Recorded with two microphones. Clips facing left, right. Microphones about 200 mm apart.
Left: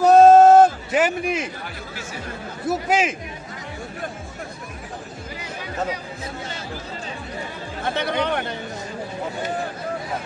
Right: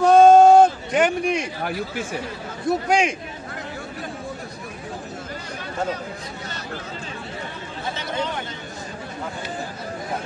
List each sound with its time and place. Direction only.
0.0 s a sound: 5° left (ahead or behind)
2.6 s a man's voice: 5° left (ahead or behind)
7.8 s speech: 65° left (ahead or behind)